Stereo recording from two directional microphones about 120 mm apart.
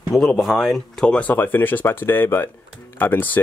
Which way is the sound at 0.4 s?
Centre (ahead or behind).